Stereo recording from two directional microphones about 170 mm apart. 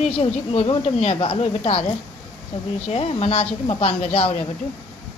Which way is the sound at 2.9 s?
35° left (ahead or behind).